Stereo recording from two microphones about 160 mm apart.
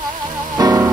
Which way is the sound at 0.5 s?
20° right (ahead or behind).